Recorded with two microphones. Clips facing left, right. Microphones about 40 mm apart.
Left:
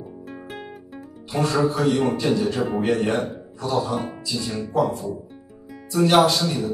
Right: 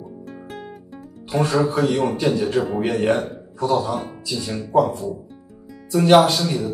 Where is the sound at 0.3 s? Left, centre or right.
Centre.